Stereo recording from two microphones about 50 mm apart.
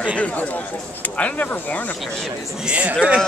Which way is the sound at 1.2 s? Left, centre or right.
Left.